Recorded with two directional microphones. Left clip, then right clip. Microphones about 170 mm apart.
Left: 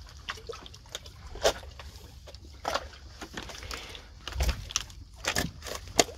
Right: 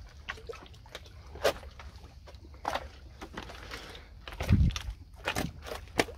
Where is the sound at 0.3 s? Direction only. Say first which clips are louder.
Left 2 dB; 50° left (ahead or behind).